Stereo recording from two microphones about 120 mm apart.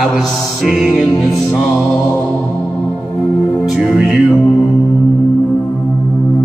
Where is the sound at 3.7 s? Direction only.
5° right (ahead or behind).